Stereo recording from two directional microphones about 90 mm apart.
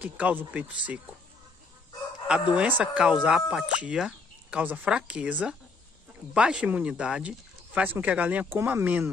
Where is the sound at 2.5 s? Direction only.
15° right (ahead or behind).